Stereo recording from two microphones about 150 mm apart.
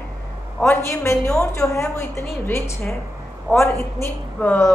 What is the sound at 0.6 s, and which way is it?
A woman's voice, 15° left (ahead or behind).